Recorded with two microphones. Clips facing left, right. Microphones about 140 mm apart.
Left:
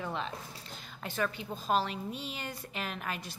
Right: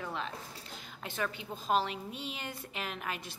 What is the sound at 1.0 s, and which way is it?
A woman's voice, 20° right (ahead or behind).